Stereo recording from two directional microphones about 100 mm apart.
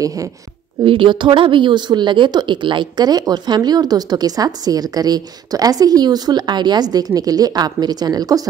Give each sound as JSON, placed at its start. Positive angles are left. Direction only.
{"t": 0.0, "sound": "a woman's voice", "side_deg": -35}
{"t": 0.8, "sound": "a woman's voice", "side_deg": -55}